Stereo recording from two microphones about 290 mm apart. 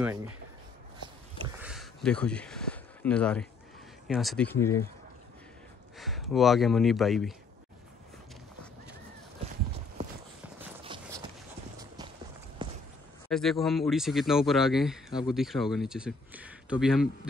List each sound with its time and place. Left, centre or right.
0.0 s speech: centre
0.9 s dog: centre
1.6 s a sound: centre
4.1 s speech: centre
5.9 s speech: centre
10.8 s a sound: centre
12.6 s walk: centre
13.3 s speech: centre